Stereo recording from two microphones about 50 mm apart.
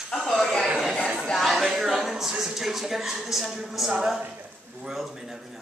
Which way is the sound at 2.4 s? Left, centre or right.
Centre.